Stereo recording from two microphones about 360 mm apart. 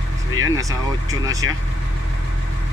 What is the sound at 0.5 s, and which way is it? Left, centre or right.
Speech, centre.